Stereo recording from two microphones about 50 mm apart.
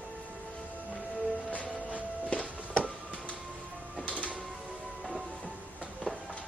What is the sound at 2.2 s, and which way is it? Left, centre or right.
Music, left.